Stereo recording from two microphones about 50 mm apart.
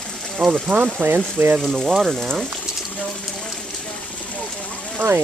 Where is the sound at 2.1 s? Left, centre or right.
Centre.